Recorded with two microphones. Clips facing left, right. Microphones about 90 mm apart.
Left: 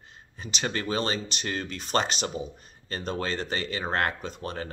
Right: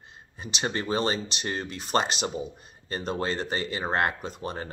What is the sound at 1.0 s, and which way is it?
Speech, 10° right (ahead or behind).